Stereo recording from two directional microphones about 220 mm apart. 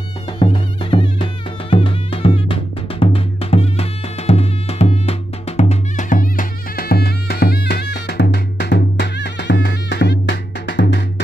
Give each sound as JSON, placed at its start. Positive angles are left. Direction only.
{"t": 0.4, "sound": "music", "side_deg": 20}